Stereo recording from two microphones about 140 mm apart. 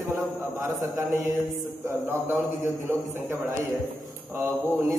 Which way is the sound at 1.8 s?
15° right (ahead or behind).